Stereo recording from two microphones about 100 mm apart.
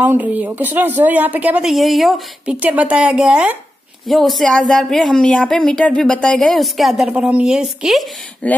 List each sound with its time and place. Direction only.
0.0 s a woman's voice: 15° right (ahead or behind)
1.6 s a woman's voice: centre (ahead or behind)
2.4 s a woman's voice: 15° right (ahead or behind)
4.1 s speech: centre (ahead or behind)
7.1 s a woman's voice: 10° right (ahead or behind)
8.4 s speech: 15° left (ahead or behind)